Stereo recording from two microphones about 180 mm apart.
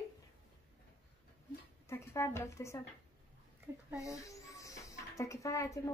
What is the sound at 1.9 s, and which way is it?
Speech, 15° left (ahead or behind).